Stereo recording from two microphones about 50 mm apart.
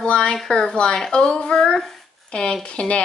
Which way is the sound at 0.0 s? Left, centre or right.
Centre.